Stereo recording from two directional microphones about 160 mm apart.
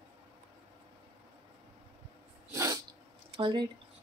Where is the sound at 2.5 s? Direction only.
20° right (ahead or behind).